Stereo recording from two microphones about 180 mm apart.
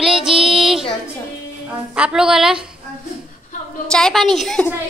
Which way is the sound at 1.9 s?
5° right (ahead or behind).